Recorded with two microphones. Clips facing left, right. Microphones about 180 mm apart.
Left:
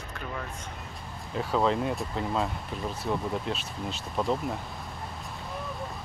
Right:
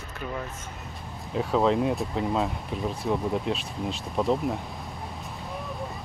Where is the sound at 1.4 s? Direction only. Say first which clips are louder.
Right 3 dB; centre (ahead or behind).